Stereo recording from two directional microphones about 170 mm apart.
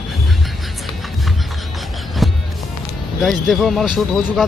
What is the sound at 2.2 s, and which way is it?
Music, centre (ahead or behind).